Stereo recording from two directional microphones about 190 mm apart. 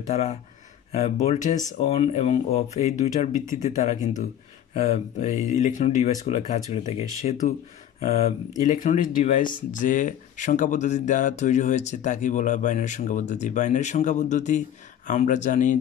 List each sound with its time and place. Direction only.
0.0 s speech: 35° left (ahead or behind)